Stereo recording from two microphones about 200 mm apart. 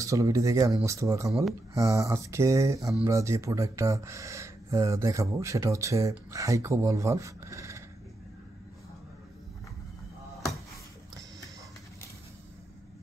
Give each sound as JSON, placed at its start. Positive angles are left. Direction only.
{"t": 0.0, "sound": "speech", "side_deg": -15}